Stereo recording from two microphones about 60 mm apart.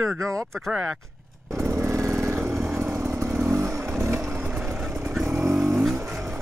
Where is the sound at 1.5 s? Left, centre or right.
Right.